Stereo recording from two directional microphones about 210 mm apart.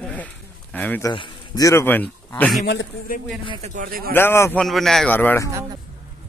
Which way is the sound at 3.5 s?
30° right (ahead or behind).